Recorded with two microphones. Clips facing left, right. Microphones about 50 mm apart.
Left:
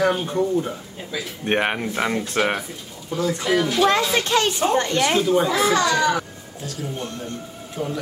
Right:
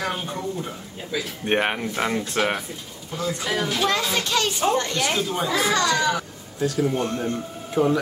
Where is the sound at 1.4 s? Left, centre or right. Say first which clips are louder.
Left 2 dB; centre.